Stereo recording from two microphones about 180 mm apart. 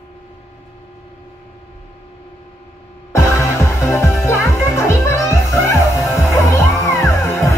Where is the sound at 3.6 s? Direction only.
15° left (ahead or behind).